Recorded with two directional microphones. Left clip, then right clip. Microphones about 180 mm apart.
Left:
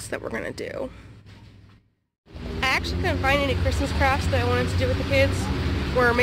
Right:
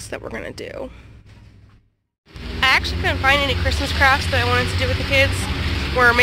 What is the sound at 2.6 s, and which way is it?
Speech, centre (ahead or behind).